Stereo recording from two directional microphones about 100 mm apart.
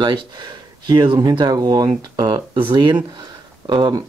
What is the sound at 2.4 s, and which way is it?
Speech, 65° right (ahead or behind).